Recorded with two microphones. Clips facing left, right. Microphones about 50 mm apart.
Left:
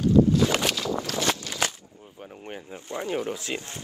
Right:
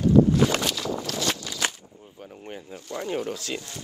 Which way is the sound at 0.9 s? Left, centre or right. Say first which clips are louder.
Left 2 dB; left.